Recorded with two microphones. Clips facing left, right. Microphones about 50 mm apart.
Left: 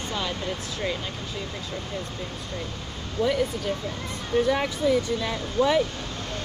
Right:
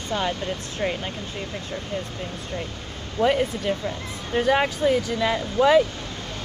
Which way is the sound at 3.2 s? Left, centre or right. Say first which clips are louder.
Right 3 dB; right.